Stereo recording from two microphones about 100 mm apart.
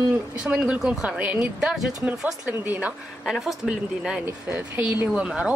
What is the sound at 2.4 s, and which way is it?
Speech, 15° right (ahead or behind).